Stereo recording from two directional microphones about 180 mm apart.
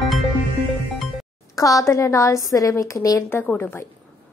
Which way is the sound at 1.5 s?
20° left (ahead or behind).